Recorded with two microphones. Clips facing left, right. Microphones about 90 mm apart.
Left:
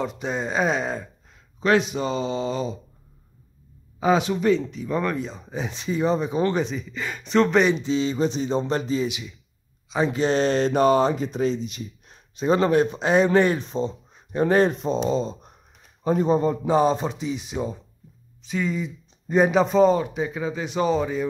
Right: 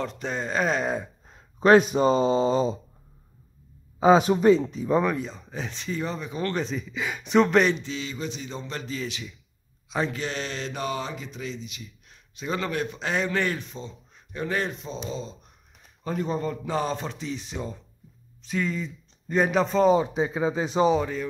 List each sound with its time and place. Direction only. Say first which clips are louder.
0.0 s speech: left 3 dB; 10° left (ahead or behind)
1.2 s speech: right 4 dB; 40° right (ahead or behind)
4.2 s speech: right 2 dB; 40° right (ahead or behind)
5.0 s a man's voice: even; centre (ahead or behind); by 6.5 s 25° left (ahead or behind)
6.5 s speech: left 3 dB; centre (ahead or behind)
7.7 s speech: left 9 dB; 25° left (ahead or behind)
9.8 s speech: left 4 dB; 5° left (ahead or behind)
10.1 s speech: left 11 dB; 30° left (ahead or behind)
16.0 s a man's voice: left 8 dB; 20° left (ahead or behind); by 19.9 s 5° left (ahead or behind)
20.0 s speech: right 2 dB; 25° right (ahead or behind)
21.0 s a man's voice: left 4 dB; 10° left (ahead or behind)